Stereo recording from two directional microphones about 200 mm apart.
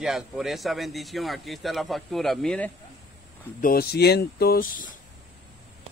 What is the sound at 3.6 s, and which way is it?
Speech, 50° left (ahead or behind).